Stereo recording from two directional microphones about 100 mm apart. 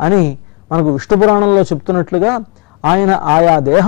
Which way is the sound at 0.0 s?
5° right (ahead or behind).